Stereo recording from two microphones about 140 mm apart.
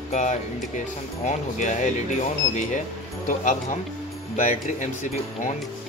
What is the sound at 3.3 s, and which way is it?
Speech, 55° left (ahead or behind).